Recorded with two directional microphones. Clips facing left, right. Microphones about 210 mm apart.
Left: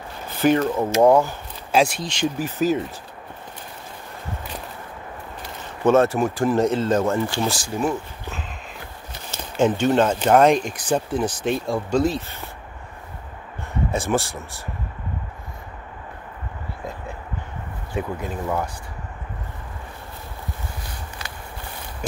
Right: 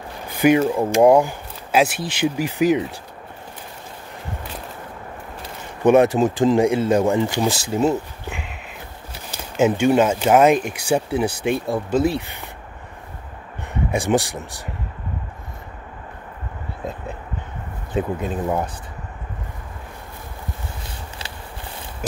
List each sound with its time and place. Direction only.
0.4 s speech: 10° right (ahead or behind)
5.9 s speech: 15° right (ahead or behind)
9.6 s speech: 10° right (ahead or behind)
12.2 s speech: 15° right (ahead or behind)
13.9 s speech: 15° right (ahead or behind)
17.9 s speech: 20° right (ahead or behind)